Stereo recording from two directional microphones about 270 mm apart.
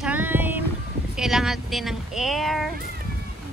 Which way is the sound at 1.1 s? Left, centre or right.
Centre.